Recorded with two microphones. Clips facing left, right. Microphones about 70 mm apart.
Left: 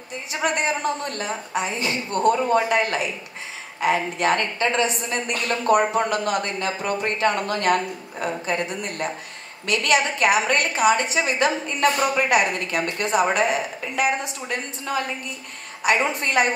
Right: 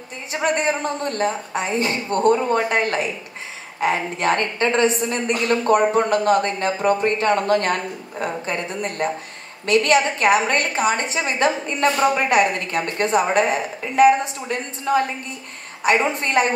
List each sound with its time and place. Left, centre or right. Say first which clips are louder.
0.3 s a woman's voice: right 3 dB; right